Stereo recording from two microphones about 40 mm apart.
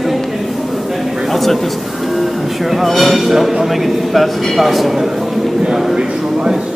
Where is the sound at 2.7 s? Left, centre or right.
Centre.